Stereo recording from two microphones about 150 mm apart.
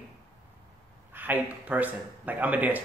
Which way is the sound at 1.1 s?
10° right (ahead or behind).